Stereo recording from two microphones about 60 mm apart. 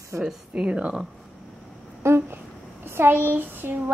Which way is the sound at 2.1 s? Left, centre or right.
Right.